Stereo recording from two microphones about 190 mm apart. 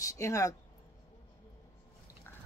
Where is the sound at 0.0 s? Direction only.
15° left (ahead or behind).